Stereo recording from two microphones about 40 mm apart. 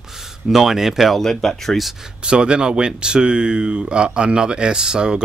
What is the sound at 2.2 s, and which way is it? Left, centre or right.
Speech, right.